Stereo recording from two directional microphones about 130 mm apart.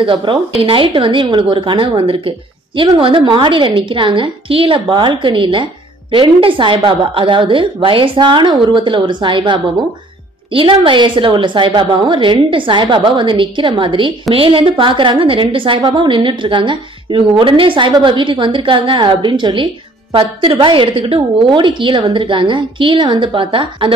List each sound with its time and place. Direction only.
0.0 s a woman's voice: 40° right (ahead or behind)